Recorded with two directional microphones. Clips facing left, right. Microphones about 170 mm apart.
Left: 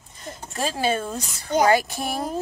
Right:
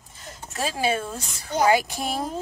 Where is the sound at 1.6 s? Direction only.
15° right (ahead or behind).